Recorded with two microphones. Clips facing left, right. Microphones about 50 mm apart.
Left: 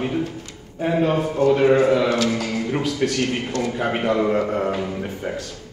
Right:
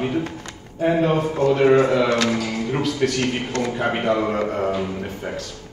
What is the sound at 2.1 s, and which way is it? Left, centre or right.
Speech, right.